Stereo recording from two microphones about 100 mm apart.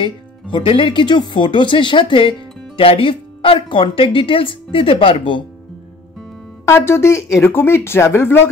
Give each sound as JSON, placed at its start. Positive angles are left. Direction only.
{"t": 0.0, "sound": "speech", "side_deg": 55}
{"t": 6.6, "sound": "speech", "side_deg": 25}